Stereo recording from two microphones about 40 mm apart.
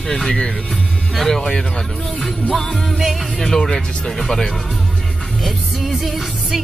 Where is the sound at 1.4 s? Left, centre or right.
Centre.